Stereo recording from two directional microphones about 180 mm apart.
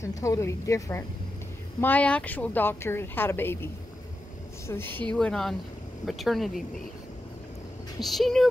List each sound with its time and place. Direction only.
0.0 s a woman's voice: 15° left (ahead or behind); by 6.6 s centre (ahead or behind)
8.0 s speech: centre (ahead or behind)